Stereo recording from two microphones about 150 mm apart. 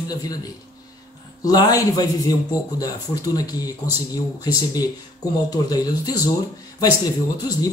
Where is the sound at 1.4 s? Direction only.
25° left (ahead or behind).